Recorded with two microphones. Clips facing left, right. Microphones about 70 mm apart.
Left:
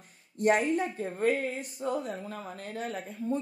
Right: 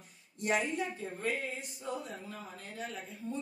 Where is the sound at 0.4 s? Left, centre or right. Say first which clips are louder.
Left 7 dB; left.